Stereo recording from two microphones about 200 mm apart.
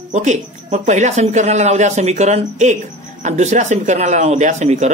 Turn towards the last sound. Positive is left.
turn(degrees=-35)  # may be behind; listen again after turning